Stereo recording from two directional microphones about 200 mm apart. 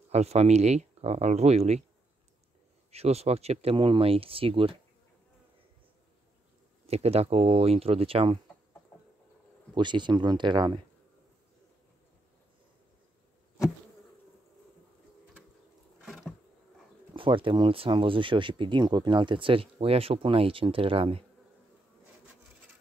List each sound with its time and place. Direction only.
0.1 s speech: 30° right (ahead or behind)
2.9 s speech: 30° right (ahead or behind)
6.9 s speech: 30° right (ahead or behind)
9.8 s speech: 25° right (ahead or behind)
16.1 s a sound: centre (ahead or behind)
17.1 s speech: 25° right (ahead or behind)